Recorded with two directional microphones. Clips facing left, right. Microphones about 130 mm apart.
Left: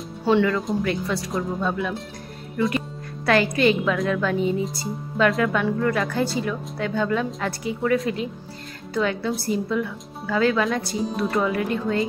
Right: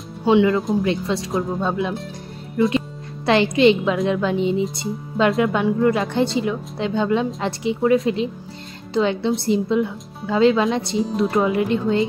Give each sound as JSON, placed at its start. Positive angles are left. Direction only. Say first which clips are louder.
{"t": 0.2, "sound": "speech", "louder": "right 4 dB", "side_deg": -15}